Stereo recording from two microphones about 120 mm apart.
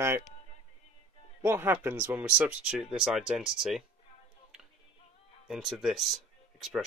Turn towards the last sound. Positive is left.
turn(degrees=0)  # may be behind; listen again after turning